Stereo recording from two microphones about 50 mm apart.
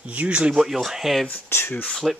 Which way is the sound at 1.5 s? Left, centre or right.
Left.